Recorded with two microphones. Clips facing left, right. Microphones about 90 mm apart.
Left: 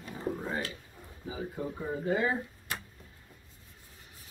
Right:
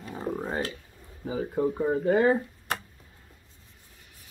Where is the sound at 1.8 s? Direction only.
50° right (ahead or behind).